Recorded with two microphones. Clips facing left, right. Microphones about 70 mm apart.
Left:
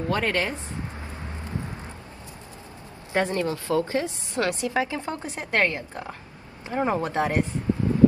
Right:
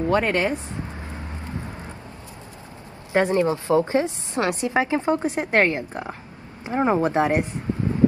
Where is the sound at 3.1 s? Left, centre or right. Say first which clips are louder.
Right 5 dB; right.